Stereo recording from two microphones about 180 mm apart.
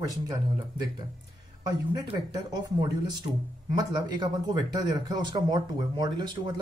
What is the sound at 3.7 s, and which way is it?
Speech, 25° right (ahead or behind).